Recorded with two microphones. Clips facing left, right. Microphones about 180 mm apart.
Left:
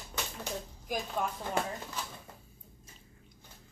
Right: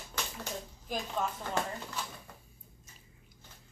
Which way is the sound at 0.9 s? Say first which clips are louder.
Left 1 dB; 15° left (ahead or behind).